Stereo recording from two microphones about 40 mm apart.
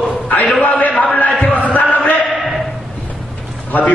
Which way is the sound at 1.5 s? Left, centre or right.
Left.